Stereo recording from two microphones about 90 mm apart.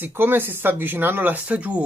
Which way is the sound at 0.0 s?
25° right (ahead or behind).